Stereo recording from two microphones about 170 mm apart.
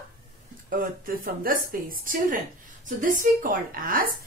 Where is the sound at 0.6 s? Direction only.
55° right (ahead or behind).